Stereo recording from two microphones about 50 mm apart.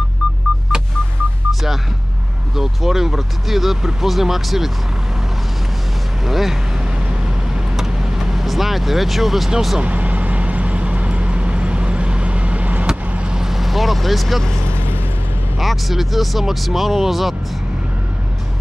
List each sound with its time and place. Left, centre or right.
0.2 s telephone dialing: centre
1.5 s vehicle: centre
2.5 s speech: centre
6.2 s speech: centre
7.7 s vehicle: centre
9.8 s vehicle: right; by 14.4 s centre
14.7 s a sound: right
15.6 s speech: centre